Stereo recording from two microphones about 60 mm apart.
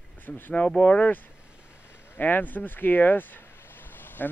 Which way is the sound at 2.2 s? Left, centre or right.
Left.